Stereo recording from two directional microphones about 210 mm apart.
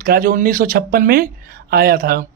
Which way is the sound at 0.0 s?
40° right (ahead or behind).